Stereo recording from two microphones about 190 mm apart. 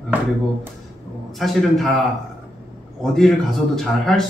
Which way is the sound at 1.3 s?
Centre (ahead or behind).